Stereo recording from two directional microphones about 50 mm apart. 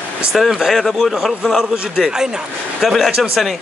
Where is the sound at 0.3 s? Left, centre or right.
Centre.